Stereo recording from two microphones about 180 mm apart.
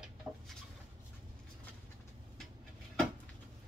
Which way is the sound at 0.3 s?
20° right (ahead or behind).